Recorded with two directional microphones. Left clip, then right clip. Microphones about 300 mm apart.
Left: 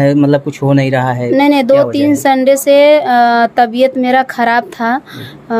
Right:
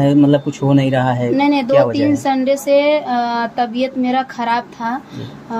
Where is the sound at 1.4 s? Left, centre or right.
Left.